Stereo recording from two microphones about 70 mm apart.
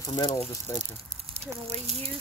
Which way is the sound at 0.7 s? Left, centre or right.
Left.